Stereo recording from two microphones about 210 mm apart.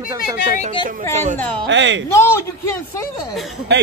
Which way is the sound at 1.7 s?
60° right (ahead or behind).